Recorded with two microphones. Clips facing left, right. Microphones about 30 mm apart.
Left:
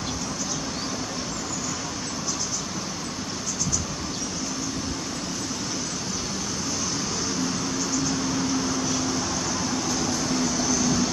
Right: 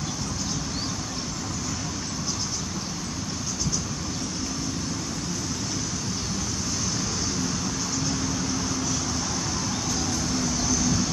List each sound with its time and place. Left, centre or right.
10.0 s vehicle: centre